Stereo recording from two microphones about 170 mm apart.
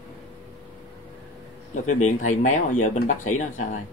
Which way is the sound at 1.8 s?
45° left (ahead or behind).